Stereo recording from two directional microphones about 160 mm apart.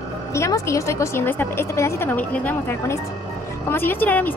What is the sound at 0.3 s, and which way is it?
A woman's voice, 20° left (ahead or behind).